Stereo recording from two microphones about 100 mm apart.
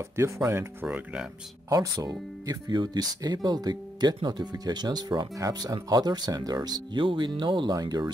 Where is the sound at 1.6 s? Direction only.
40° right (ahead or behind).